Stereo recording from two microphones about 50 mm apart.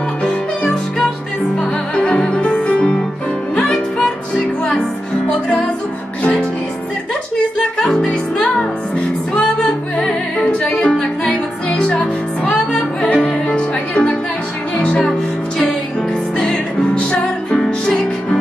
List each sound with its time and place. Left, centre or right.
0.2 s music: centre
7.3 s music: centre
13.0 s music: left
16.3 s music: centre